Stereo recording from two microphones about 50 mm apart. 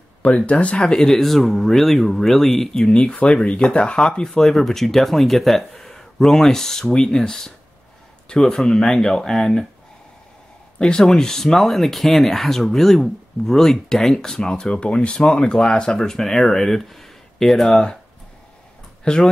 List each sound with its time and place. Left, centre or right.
0.5 s speech: left
0.9 s speech: centre
10.8 s speech: centre
19.1 s speech: centre